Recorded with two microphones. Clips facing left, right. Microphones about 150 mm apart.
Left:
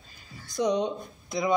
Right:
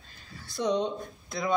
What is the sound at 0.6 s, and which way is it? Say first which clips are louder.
Speech: left 2 dB; 15° left (ahead or behind).